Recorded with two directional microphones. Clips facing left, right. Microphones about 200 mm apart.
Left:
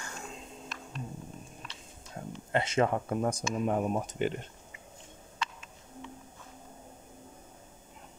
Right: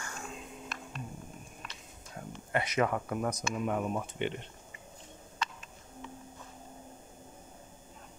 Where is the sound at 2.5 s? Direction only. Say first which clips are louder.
Left 2 dB; 25° left (ahead or behind).